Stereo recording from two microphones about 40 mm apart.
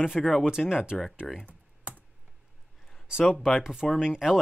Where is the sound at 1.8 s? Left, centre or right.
Right.